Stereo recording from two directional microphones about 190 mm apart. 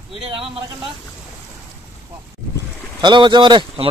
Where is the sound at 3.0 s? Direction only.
25° right (ahead or behind).